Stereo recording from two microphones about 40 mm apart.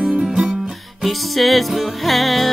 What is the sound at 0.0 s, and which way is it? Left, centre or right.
Music, right.